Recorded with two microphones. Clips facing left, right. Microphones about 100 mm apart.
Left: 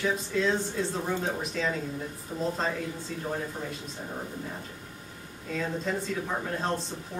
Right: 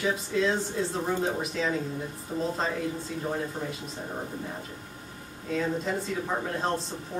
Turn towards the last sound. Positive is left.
turn(degrees=0)  # may be behind; listen again after turning